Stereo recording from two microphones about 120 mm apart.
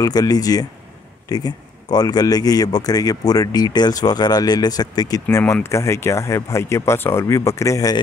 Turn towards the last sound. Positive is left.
turn(degrees=30)  # may be behind; listen again after turning